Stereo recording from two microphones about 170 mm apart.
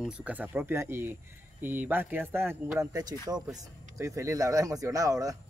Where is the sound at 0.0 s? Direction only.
10° right (ahead or behind).